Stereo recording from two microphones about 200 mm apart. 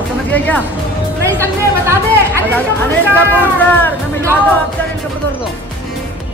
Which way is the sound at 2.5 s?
10° left (ahead or behind).